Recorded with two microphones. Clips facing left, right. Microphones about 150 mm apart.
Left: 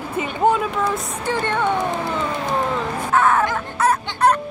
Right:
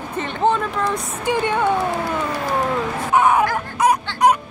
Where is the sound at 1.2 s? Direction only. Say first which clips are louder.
Right 3 dB; 15° right (ahead or behind).